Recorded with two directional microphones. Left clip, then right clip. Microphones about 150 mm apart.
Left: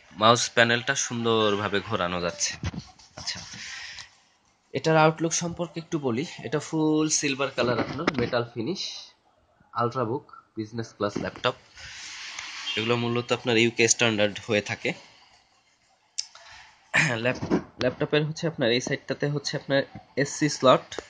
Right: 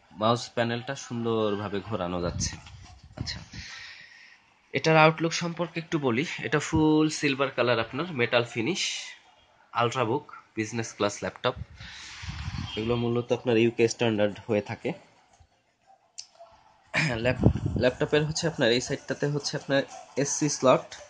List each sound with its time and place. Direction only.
0.2 s speech: centre (ahead or behind)
3.3 s a sound: 10° right (ahead or behind)
4.6 s speech: 10° left (ahead or behind)
5.7 s speech: 5° left (ahead or behind)
8.4 s speech: 15° right (ahead or behind)
12.7 s speech: 10° right (ahead or behind)
16.2 s clicking: 5° right (ahead or behind)
16.9 s a sound: centre (ahead or behind)
17.8 s speech: 10° right (ahead or behind)